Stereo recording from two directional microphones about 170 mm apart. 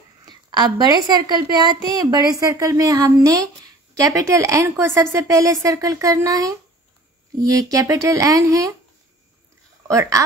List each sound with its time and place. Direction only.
0.2 s a woman's voice: 25° right (ahead or behind)
9.8 s a woman's voice: 20° right (ahead or behind)